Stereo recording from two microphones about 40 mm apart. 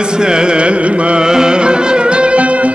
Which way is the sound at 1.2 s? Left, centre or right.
Centre.